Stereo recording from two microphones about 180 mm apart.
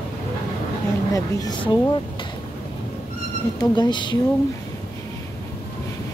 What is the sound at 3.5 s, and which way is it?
Speech, 25° left (ahead or behind).